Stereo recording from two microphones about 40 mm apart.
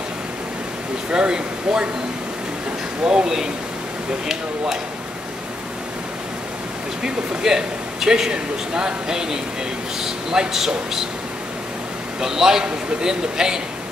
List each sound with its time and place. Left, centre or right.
1.1 s speech: centre
3.0 s speech: centre
7.0 s a man's voice: centre
12.2 s a man's voice: centre